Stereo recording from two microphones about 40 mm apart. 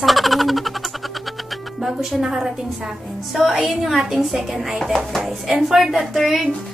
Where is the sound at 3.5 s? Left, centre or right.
Centre.